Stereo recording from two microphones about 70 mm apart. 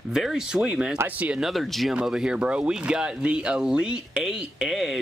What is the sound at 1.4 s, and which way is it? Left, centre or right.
Speech, centre.